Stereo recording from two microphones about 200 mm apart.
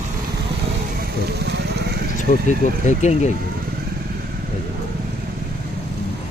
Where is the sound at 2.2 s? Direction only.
35° left (ahead or behind).